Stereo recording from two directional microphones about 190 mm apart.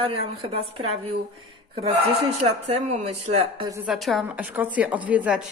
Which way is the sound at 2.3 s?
30° right (ahead or behind).